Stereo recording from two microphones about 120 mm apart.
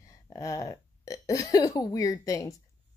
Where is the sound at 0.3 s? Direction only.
30° left (ahead or behind).